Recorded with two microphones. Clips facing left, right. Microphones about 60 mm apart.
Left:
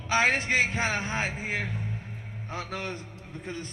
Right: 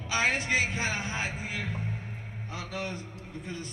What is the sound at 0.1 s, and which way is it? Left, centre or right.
A man's voice, left.